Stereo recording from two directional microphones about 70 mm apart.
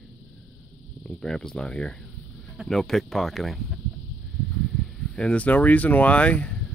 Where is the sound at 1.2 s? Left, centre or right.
Centre.